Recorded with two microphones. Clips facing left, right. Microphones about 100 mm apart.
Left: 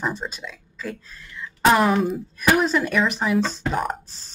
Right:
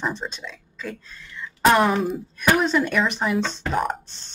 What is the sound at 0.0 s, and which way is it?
Speech, 5° left (ahead or behind).